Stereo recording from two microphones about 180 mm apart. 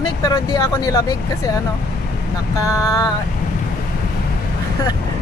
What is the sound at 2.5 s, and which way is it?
Speech, 20° left (ahead or behind).